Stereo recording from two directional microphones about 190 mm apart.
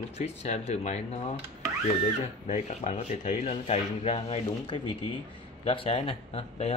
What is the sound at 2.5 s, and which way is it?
A man's voice, 35° left (ahead or behind).